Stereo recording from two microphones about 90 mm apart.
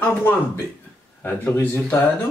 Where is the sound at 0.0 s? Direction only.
25° left (ahead or behind).